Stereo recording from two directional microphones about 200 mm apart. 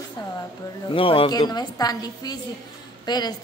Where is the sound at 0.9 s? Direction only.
25° left (ahead or behind).